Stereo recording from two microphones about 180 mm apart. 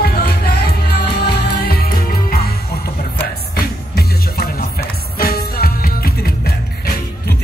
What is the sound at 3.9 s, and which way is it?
Music, 55° left (ahead or behind).